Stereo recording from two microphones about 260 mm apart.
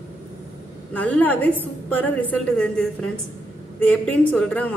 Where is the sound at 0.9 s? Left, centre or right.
Centre.